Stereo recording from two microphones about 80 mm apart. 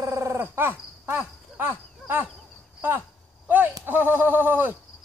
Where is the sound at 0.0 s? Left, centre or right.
Right.